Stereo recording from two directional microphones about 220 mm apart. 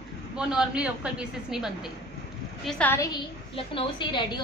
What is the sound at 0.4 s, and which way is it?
A woman's voice, 5° right (ahead or behind).